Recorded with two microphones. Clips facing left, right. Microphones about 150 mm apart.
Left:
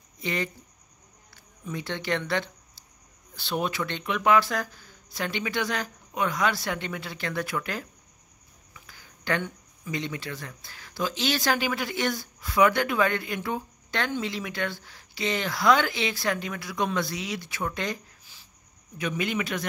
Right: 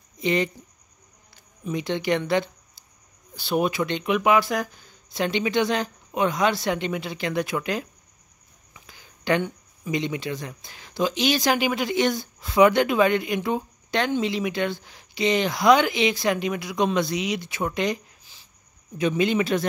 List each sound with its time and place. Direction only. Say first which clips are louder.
0.2 s speech: right 7 dB; 20° right (ahead or behind)